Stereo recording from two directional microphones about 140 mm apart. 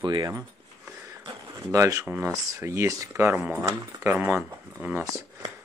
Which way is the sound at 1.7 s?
25° right (ahead or behind).